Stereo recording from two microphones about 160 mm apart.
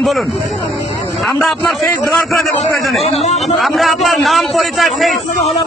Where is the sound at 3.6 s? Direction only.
Centre (ahead or behind).